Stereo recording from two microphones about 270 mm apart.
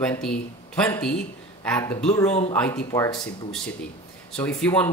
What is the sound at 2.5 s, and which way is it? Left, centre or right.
Speech, centre.